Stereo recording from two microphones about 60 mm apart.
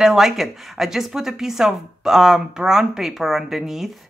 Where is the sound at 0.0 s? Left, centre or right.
Centre.